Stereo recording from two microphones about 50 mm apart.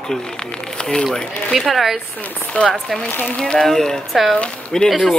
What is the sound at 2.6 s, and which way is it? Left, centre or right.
Speech, left.